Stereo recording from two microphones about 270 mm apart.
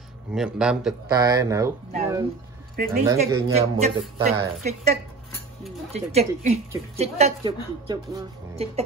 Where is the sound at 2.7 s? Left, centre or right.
Right.